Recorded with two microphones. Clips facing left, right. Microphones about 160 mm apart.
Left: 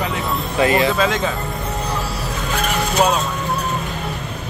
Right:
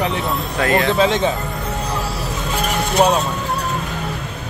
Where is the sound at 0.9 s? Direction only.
25° right (ahead or behind).